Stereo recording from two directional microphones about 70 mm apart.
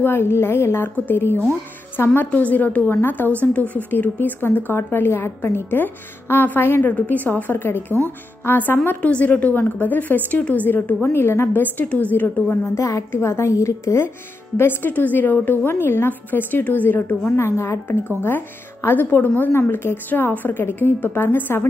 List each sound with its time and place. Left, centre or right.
0.0 s a woman's voice: left
12.6 s a woman's voice: left
14.6 s a woman's voice: left
17.6 s a woman's voice: left
18.0 s a woman's voice: left